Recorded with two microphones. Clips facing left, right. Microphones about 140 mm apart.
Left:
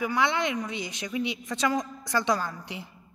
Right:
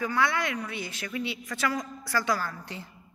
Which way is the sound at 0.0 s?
15° left (ahead or behind).